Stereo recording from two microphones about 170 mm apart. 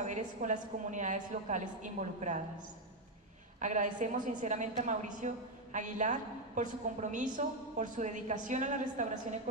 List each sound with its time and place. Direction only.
0.0 s a woman's voice: 45° right (ahead or behind)
3.5 s a woman's voice: 45° right (ahead or behind)